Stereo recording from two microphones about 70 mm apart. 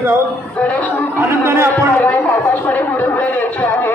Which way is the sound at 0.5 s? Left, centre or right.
Left.